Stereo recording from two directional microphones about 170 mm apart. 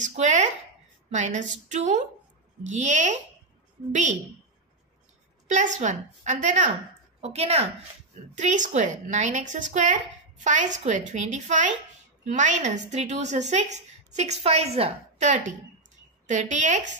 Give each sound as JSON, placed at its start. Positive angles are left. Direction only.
{"t": 0.0, "sound": "a sound", "side_deg": -45}
{"t": 1.1, "sound": "a woman's voice", "side_deg": -45}
{"t": 5.5, "sound": "a woman's voice", "side_deg": -45}